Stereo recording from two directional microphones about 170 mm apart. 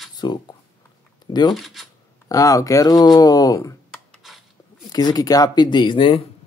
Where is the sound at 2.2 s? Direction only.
20° left (ahead or behind).